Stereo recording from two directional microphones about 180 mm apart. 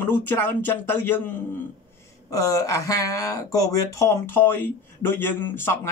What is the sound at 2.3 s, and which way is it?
Speech, 20° left (ahead or behind).